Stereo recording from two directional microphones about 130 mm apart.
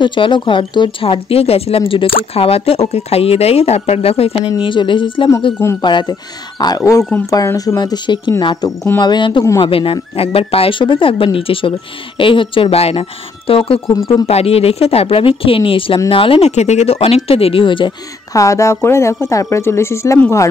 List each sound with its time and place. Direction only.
0.0 s speech: 40° left (ahead or behind)
4.5 s speech: 40° left (ahead or behind)
6.8 s a woman's voice: 20° left (ahead or behind)
8.6 s speech: 15° left (ahead or behind)
9.0 s speech: 35° left (ahead or behind)
18.3 s a woman's voice: 25° left (ahead or behind)